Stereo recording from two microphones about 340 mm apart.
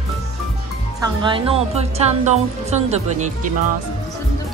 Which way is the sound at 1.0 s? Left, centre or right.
Centre.